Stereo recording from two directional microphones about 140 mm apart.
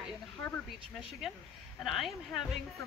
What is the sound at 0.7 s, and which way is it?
Speech, centre (ahead or behind).